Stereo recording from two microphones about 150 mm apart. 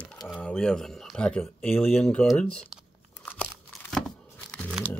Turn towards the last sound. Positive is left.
turn(degrees=5)  # may be behind; listen again after turning